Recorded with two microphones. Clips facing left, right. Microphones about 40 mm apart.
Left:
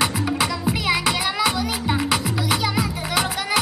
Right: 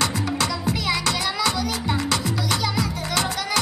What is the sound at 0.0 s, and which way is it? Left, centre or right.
Music, centre.